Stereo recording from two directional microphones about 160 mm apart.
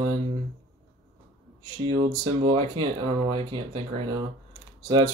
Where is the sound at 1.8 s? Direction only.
30° right (ahead or behind).